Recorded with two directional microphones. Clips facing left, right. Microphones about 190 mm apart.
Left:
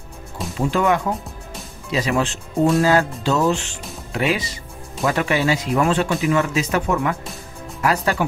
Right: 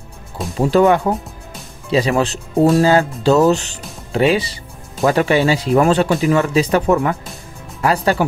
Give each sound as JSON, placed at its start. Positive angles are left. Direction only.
{"t": 0.6, "sound": "speech", "side_deg": -35}